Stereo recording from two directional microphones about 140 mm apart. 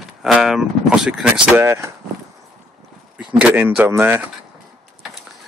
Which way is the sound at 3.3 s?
15° right (ahead or behind).